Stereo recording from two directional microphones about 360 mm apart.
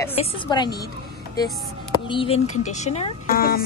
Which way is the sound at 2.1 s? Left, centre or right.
Centre.